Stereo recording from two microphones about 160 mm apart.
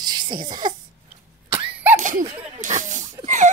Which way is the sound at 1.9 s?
50° right (ahead or behind).